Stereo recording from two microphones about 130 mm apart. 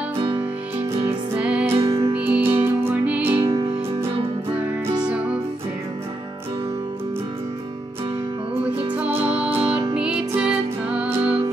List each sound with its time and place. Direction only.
1.0 s music: 10° right (ahead or behind)
1.8 s music: 45° right (ahead or behind)
2.1 s music: 10° right (ahead or behind)
3.3 s music: 45° right (ahead or behind)
5.0 s music: 10° right (ahead or behind)
8.6 s music: 10° right (ahead or behind)